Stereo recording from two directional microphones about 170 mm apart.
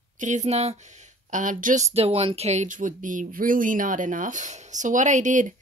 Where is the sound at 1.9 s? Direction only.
35° right (ahead or behind).